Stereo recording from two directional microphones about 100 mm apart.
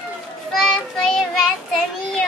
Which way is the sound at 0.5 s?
Centre (ahead or behind).